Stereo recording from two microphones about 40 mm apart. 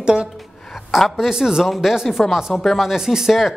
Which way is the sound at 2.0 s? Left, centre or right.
Centre.